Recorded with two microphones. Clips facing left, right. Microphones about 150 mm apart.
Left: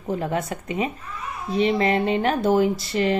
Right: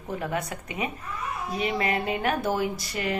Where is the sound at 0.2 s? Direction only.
25° left (ahead or behind).